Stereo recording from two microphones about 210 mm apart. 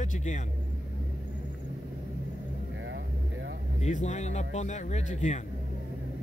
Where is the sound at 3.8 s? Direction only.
35° left (ahead or behind).